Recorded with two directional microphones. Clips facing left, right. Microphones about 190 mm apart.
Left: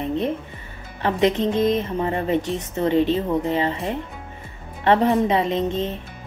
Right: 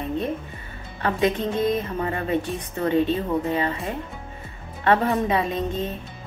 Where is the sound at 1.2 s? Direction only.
20° left (ahead or behind).